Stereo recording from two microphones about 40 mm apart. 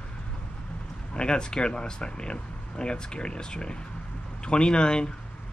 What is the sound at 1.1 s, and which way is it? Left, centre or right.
Speech, left.